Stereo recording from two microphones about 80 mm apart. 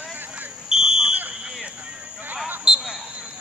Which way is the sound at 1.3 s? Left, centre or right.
Centre.